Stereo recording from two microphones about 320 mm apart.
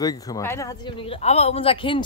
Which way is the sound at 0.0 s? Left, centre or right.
Centre.